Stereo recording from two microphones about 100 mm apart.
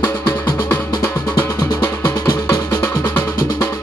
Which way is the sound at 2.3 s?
35° left (ahead or behind).